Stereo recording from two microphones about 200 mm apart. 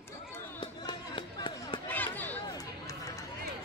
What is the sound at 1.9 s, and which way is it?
Chatter, 10° left (ahead or behind).